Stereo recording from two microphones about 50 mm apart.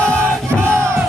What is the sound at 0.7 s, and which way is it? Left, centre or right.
Battle cry, right.